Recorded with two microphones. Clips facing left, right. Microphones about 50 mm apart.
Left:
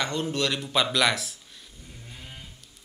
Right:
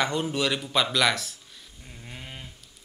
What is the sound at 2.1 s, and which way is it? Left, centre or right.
Livestock, right.